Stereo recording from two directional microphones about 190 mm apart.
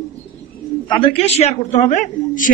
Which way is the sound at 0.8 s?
25° left (ahead or behind).